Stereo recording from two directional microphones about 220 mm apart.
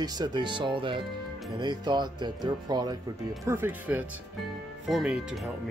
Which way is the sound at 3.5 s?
10° right (ahead or behind).